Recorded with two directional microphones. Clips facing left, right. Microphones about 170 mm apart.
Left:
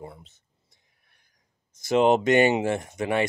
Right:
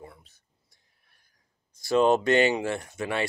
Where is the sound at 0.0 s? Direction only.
25° left (ahead or behind).